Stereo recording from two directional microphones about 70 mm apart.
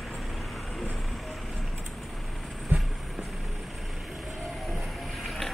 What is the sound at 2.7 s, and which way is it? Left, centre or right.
Vehicle, right.